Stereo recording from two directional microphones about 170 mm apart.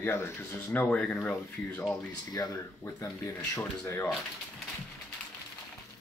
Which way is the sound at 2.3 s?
20° left (ahead or behind).